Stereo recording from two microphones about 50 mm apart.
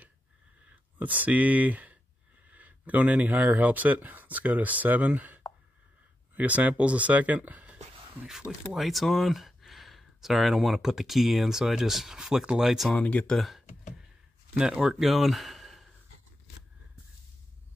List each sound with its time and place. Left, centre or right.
0.7 s speech: right
8.3 s speech: centre
13.0 s speech: left
14.6 s speech: centre